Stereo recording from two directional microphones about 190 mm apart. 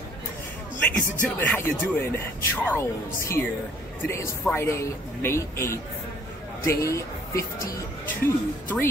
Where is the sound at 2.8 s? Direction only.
15° left (ahead or behind).